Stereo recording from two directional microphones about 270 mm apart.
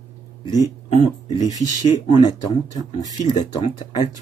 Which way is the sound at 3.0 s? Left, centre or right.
Centre.